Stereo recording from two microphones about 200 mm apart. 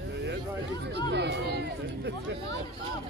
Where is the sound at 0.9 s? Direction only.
60° right (ahead or behind).